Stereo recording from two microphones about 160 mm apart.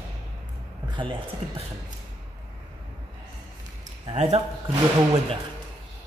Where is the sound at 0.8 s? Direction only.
30° right (ahead or behind).